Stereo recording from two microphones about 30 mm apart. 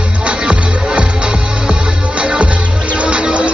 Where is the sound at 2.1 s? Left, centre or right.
Right.